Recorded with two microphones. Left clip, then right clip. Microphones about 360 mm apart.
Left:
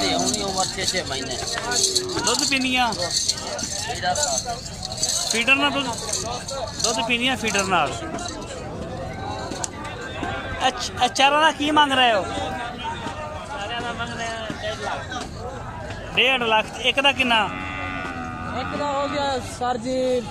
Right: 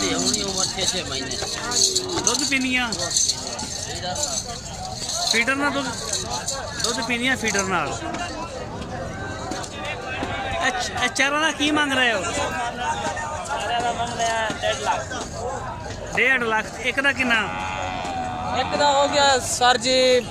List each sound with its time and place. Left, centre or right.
0.0 s a sound: centre
2.2 s speech: centre
5.3 s a man's voice: centre
7.0 s a man's voice: centre
10.6 s a man's voice: centre
13.8 s a sound: right
16.2 s speech: centre
18.9 s music: right